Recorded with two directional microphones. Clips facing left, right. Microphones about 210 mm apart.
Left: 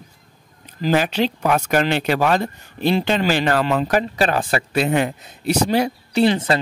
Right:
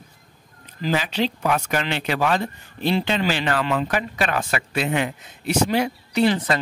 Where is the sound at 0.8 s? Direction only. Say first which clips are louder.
Left 4 dB; 50° left (ahead or behind).